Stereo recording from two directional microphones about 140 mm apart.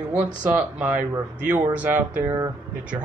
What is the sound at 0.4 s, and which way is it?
A man's voice, 10° right (ahead or behind).